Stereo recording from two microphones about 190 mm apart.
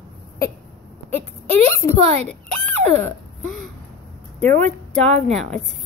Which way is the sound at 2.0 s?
35° right (ahead or behind).